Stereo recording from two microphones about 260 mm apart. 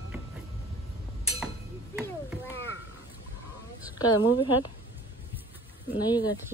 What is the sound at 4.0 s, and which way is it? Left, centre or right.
Speech, centre.